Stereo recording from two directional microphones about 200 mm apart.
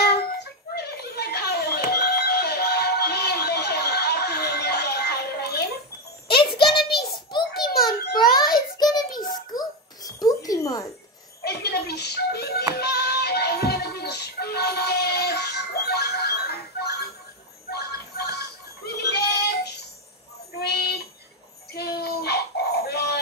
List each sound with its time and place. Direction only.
0.0 s a sound: 55° left (ahead or behind)
8.7 s child singing: 20° left (ahead or behind)
9.5 s babbling: 20° left (ahead or behind)
11.4 s music: 55° left (ahead or behind)
17.6 s goat: 55° left (ahead or behind)
20.5 s a sound: 55° left (ahead or behind)
21.7 s synthetic singing: 55° left (ahead or behind)